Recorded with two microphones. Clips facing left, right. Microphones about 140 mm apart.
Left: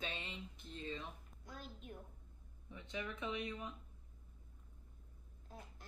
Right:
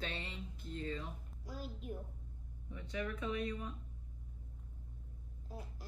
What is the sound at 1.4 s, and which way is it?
Speech, 5° right (ahead or behind).